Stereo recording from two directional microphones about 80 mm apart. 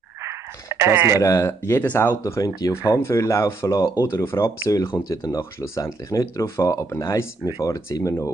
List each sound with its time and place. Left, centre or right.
0.2 s a sound: right
1.2 s speech: left
4.6 s speech: left
7.6 s speech: left